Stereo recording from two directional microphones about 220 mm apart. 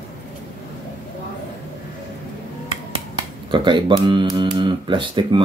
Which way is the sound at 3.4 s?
20° right (ahead or behind).